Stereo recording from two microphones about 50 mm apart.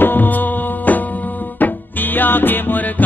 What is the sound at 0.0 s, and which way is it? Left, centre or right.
Music, left.